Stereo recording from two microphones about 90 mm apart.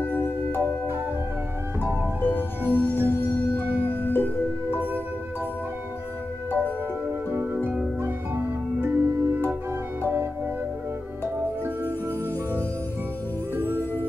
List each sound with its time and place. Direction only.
0.0 s music: 25° left (ahead or behind)
2.2 s music: 25° left (ahead or behind)
3.5 s music: 25° right (ahead or behind)
3.9 s music: 25° left (ahead or behind)
8.0 s music: 25° right (ahead or behind)
13.6 s music: 30° right (ahead or behind)